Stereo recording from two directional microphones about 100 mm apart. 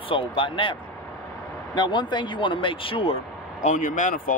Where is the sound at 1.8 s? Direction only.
50° left (ahead or behind).